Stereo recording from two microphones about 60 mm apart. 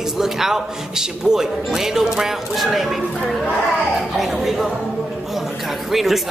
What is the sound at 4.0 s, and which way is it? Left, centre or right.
Music, centre.